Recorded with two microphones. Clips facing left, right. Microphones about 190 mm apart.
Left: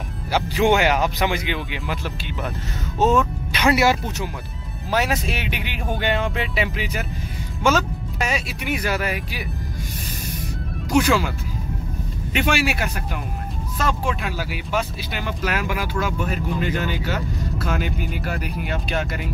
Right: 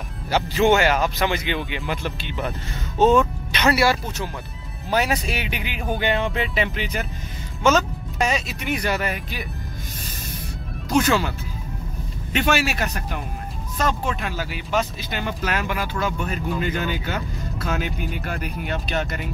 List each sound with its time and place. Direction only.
0.3 s speech: 15° left (ahead or behind)
3.7 s speech: 15° left (ahead or behind)
4.9 s speech: centre (ahead or behind)
10.9 s speech: 10° left (ahead or behind)